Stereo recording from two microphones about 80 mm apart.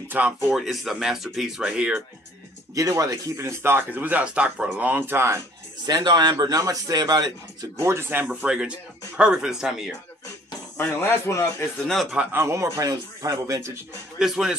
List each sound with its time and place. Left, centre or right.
0.1 s speech: centre
0.5 s speech: centre
2.7 s speech: right
3.4 s speech: right
5.9 s a man's voice: right
6.4 s a man's voice: right
7.8 s speech: right
8.3 s speech: centre
10.8 s speech: left
11.8 s speech: centre
12.3 s speech: right
14.1 s speech: centre